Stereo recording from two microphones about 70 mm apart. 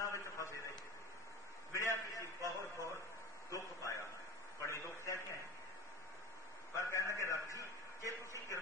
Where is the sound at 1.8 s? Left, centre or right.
Left.